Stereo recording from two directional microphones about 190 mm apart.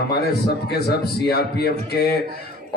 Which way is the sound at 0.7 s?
60° left (ahead or behind).